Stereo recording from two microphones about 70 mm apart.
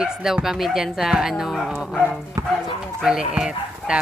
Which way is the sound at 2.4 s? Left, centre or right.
Right.